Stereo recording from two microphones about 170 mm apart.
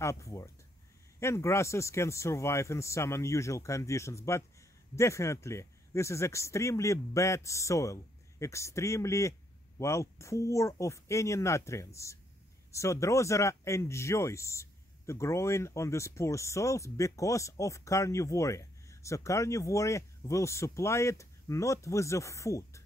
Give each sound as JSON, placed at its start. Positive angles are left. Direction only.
{"t": 0.0, "sound": "speech", "side_deg": 20}